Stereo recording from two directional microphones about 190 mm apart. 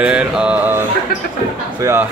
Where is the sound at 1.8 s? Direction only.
15° right (ahead or behind).